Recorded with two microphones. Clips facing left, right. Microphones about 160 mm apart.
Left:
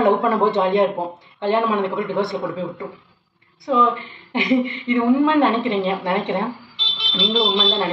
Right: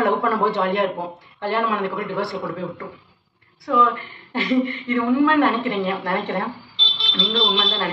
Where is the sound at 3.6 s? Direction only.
20° left (ahead or behind).